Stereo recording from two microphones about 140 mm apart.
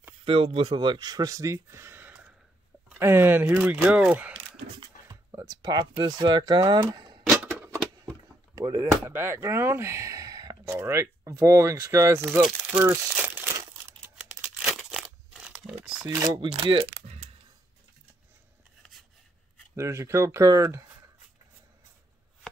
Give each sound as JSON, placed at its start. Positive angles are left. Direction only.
{"t": 0.2, "sound": "speech", "side_deg": -40}
{"t": 4.7, "sound": "speech", "side_deg": -25}
{"t": 7.6, "sound": "a sound", "side_deg": -15}
{"t": 8.5, "sound": "speech", "side_deg": -20}
{"t": 12.8, "sound": "crumpling", "side_deg": -15}
{"t": 14.8, "sound": "crumpling", "side_deg": -5}
{"t": 16.3, "sound": "speech", "side_deg": -35}
{"t": 19.7, "sound": "speech", "side_deg": -20}